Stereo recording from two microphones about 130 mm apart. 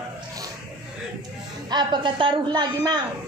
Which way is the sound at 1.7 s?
35° right (ahead or behind).